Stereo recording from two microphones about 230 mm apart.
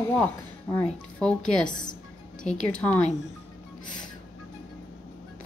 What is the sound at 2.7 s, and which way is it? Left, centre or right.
Speech, centre.